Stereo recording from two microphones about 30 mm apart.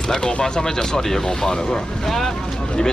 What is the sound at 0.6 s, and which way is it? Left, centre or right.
Speech, centre.